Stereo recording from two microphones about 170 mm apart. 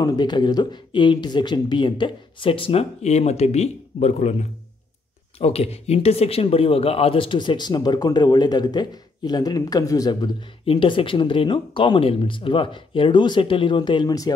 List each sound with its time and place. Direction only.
0.0 s speech: 25° left (ahead or behind)
10.6 s speech: 30° left (ahead or behind)